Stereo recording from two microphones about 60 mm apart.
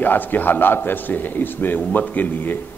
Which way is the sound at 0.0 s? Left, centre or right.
Left.